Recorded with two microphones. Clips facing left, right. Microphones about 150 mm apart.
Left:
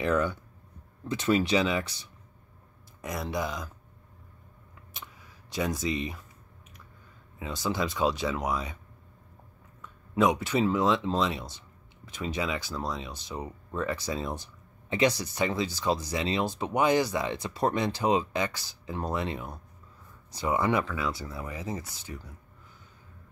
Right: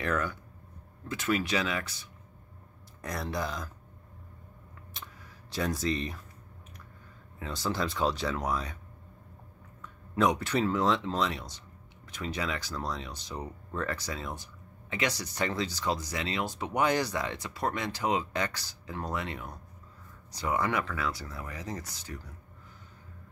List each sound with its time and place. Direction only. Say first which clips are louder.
0.0 s speech: left 5 dB; 20° left (ahead or behind)
4.9 s a sound: left 1 dB; 15° left (ahead or behind)
7.3 s speech: left 2 dB; 15° left (ahead or behind)
10.1 s speech: left 2 dB; 20° left (ahead or behind)
14.0 s speech: left 5 dB; 25° left (ahead or behind)
15.3 s speech: left 3 dB; 10° left (ahead or behind)